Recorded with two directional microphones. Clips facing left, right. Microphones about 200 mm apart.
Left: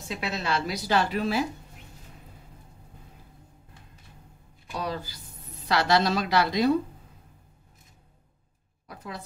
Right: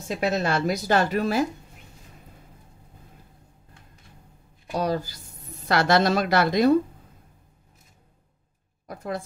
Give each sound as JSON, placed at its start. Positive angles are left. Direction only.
{"t": 0.1, "sound": "a woman's voice", "side_deg": -45}
{"t": 4.7, "sound": "a woman's voice", "side_deg": -45}
{"t": 8.8, "sound": "a woman's voice", "side_deg": -50}